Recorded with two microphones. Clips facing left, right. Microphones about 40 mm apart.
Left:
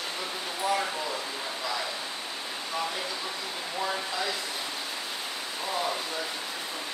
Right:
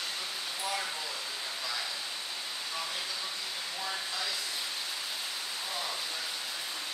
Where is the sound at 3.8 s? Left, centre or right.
Left.